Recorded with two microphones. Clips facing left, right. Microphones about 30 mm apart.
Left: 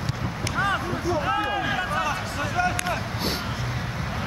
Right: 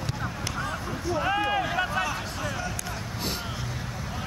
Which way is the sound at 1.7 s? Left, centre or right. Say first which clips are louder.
Left 1 dB; centre.